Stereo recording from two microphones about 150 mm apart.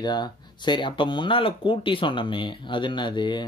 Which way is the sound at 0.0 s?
30° left (ahead or behind).